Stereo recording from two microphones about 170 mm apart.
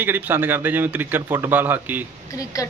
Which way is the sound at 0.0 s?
10° right (ahead or behind).